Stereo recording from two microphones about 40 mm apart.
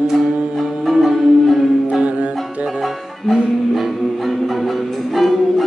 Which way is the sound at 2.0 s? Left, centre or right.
Right.